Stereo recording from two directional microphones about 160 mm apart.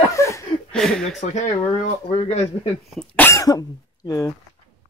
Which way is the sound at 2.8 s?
5° left (ahead or behind).